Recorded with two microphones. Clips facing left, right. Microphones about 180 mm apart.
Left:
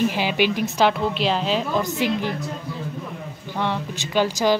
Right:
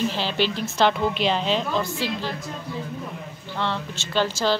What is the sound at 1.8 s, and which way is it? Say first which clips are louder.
Speech: left 4 dB; 20° left (ahead or behind).